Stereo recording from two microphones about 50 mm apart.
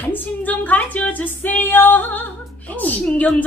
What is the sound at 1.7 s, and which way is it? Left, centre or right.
Female singing, left.